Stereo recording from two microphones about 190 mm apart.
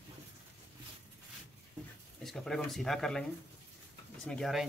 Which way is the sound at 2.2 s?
Centre (ahead or behind).